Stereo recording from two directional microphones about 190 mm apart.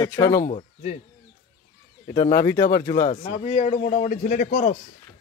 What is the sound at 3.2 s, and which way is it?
A man's voice, 35° left (ahead or behind).